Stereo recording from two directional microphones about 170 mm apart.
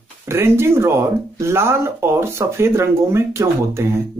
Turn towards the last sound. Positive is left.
turn(degrees=-15)  # may be behind; listen again after turning